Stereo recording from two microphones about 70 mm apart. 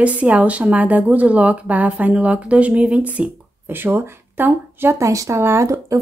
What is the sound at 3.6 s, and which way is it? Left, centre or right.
Speech, right.